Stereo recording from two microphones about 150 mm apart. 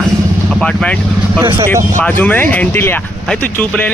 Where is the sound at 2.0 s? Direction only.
10° left (ahead or behind).